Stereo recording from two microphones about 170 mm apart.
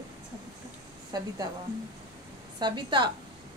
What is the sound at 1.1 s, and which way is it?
Speech, 25° right (ahead or behind).